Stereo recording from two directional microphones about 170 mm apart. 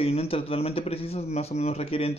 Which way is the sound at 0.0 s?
35° left (ahead or behind).